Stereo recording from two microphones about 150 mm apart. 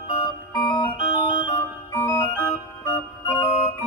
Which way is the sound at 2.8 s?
15° left (ahead or behind).